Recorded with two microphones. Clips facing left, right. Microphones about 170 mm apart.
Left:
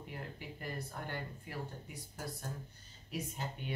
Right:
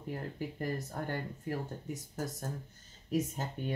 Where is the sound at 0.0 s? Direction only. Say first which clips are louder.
Right 8 dB; 40° right (ahead or behind).